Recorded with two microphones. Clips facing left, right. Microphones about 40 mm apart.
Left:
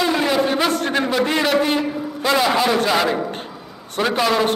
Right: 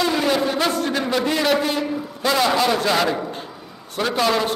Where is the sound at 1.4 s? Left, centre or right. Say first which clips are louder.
Left 2 dB; centre.